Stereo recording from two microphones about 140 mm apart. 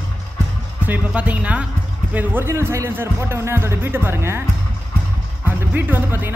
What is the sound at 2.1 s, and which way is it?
Speech, 10° right (ahead or behind).